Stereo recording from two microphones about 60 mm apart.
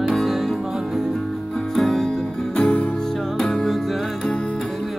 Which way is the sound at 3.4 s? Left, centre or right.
Centre.